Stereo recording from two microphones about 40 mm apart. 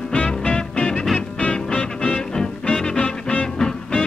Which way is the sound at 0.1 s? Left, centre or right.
Left.